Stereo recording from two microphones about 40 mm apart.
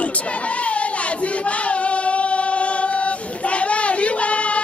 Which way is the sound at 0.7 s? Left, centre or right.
Left.